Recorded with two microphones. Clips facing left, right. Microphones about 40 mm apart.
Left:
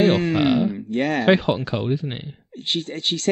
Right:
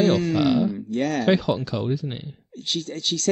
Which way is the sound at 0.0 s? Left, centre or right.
Left.